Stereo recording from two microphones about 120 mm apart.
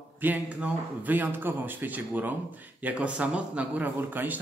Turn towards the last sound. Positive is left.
turn(degrees=-15)  # may be behind; listen again after turning